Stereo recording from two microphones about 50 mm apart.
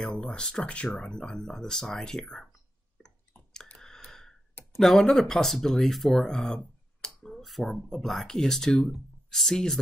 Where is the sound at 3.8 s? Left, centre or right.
Centre.